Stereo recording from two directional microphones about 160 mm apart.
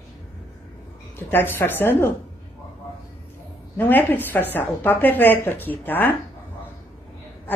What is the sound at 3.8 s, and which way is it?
Speech, 10° left (ahead or behind).